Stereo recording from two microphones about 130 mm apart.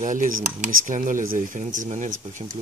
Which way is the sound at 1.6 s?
70° right (ahead or behind).